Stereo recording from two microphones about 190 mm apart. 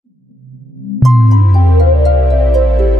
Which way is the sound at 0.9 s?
Centre (ahead or behind).